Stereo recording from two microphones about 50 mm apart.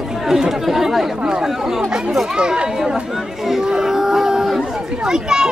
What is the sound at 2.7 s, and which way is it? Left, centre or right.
Chatter, centre.